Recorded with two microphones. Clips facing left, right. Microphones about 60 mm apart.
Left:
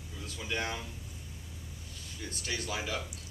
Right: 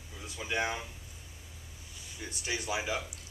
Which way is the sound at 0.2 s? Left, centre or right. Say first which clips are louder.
Right 3 dB; centre.